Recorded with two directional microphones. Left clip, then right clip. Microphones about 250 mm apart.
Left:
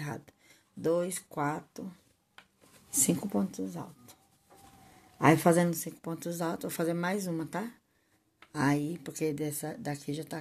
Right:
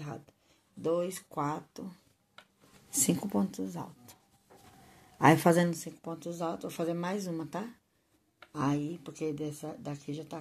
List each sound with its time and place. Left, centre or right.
0.0 s a sound: left
0.8 s speech: centre
2.9 s speech: centre
5.2 s speech: centre
5.7 s speech: centre